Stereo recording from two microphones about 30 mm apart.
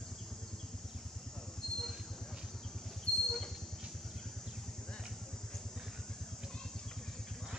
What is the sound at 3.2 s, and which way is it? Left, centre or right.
Vehicle, centre.